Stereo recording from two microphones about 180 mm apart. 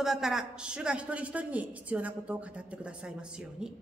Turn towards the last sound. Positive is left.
turn(degrees=-5)  # may be behind; listen again after turning